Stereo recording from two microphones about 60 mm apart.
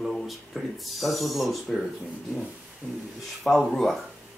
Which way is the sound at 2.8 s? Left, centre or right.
Right.